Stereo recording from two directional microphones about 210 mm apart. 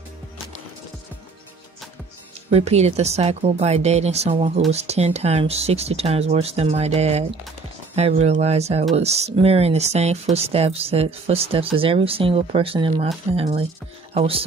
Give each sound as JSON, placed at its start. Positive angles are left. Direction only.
{"t": 2.5, "sound": "speech", "side_deg": -30}